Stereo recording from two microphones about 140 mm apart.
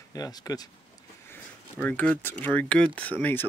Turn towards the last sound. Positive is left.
turn(degrees=10)  # may be behind; listen again after turning